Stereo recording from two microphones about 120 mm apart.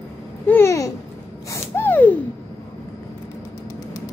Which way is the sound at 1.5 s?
15° left (ahead or behind).